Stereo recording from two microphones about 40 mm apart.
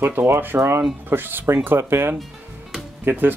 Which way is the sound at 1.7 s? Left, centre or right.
Right.